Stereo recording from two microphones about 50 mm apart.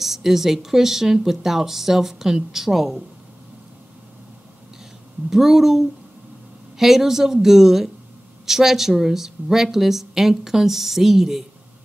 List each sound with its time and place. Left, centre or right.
0.0 s speech: centre
5.3 s speech: centre